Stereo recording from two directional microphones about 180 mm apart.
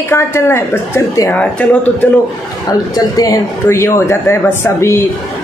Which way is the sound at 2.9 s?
20° left (ahead or behind).